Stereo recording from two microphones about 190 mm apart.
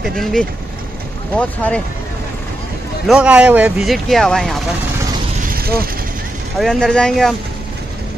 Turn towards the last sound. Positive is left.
turn(degrees=0)  # may be behind; listen again after turning